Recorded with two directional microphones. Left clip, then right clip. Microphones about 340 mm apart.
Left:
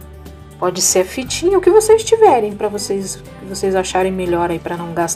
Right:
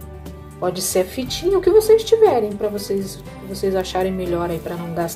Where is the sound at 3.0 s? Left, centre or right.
Left.